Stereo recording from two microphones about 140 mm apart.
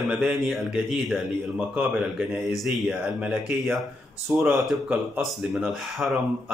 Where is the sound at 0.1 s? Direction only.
Centre (ahead or behind).